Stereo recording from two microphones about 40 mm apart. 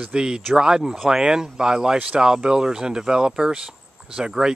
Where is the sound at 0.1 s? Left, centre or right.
Centre.